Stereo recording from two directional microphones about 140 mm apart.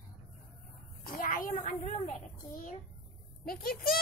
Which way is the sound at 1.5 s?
55° left (ahead or behind).